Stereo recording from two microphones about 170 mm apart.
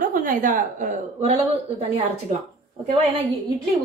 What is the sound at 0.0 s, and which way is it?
A woman's voice, 50° right (ahead or behind).